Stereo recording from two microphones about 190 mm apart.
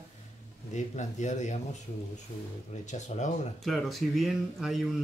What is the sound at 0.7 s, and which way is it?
Speech, 40° left (ahead or behind).